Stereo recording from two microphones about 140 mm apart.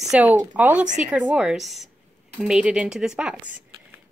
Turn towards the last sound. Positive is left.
turn(degrees=-5)  # may be behind; listen again after turning